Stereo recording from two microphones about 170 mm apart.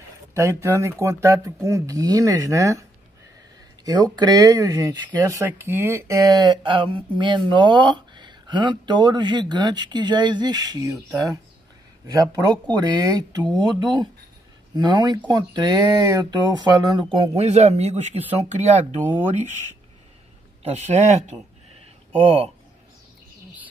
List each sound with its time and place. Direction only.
0.3 s speech: 15° right (ahead or behind)
3.8 s speech: 25° right (ahead or behind)
12.1 s speech: 20° right (ahead or behind); by 18.9 s 40° right (ahead or behind)
20.6 s speech: 40° right (ahead or behind)